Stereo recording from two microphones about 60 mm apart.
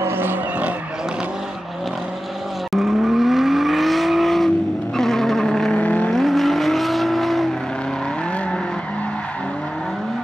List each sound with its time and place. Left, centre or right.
0.0 s vehicle: right
2.7 s vehicle: centre
4.9 s a sound: centre
5.8 s vehicle: left
6.1 s vehicle: centre